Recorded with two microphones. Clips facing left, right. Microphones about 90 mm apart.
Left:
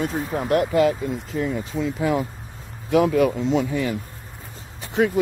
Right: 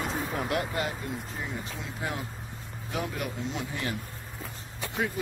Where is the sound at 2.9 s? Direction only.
90° left.